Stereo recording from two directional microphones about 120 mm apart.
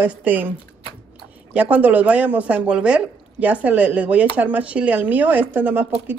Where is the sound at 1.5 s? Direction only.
15° right (ahead or behind).